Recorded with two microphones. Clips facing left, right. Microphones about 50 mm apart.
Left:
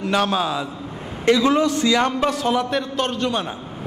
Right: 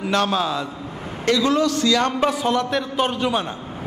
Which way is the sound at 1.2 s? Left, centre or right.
Left.